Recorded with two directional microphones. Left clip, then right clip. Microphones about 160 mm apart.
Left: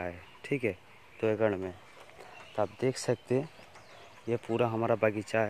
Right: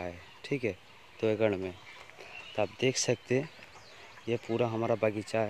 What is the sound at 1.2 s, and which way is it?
Speech, 25° right (ahead or behind).